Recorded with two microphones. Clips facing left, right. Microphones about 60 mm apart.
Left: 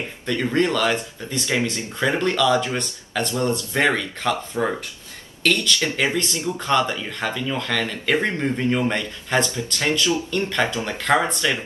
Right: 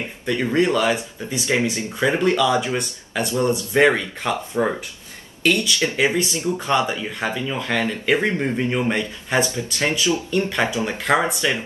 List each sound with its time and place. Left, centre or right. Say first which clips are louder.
0.3 s speech: right 2 dB; centre
5.4 s speech: right 1 dB; centre
10.3 s speech: right 1 dB; centre